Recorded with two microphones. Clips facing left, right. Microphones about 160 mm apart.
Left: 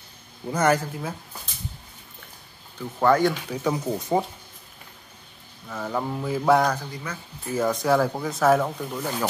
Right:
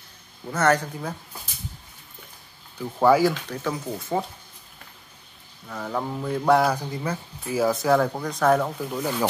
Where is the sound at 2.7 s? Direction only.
10° right (ahead or behind).